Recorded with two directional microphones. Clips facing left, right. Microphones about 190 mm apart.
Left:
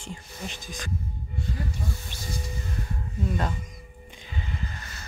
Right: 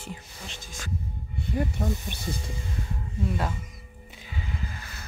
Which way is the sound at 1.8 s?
65° right (ahead or behind).